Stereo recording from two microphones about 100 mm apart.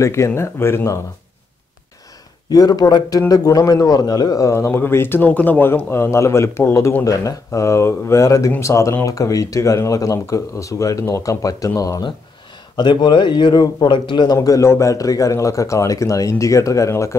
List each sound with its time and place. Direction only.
0.0 s speech: 30° left (ahead or behind)
2.5 s a man's voice: 40° left (ahead or behind)
12.7 s a man's voice: 50° left (ahead or behind); by 17.2 s 30° left (ahead or behind)